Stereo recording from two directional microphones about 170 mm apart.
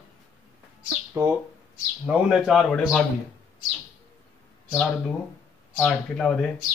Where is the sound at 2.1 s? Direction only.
5° right (ahead or behind).